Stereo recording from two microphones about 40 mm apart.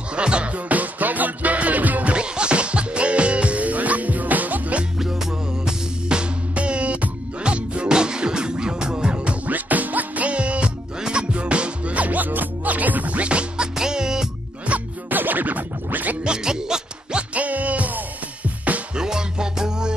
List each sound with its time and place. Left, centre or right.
0.1 s music: right
0.7 s music: right
2.1 s music: right
4.9 s music: centre
6.0 s music: right
9.5 s music: right
13.7 s music: centre
14.7 s music: right
15.0 s music: right
16.3 s music: centre
17.3 s music: right
18.9 s music: centre